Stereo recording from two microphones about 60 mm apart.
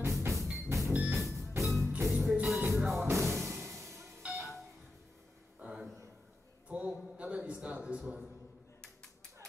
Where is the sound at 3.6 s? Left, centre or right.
Right.